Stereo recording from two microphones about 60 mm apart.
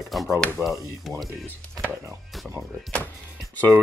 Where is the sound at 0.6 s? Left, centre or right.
Right.